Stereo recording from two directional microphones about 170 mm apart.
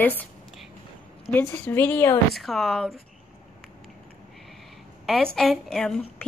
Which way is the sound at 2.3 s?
Centre (ahead or behind).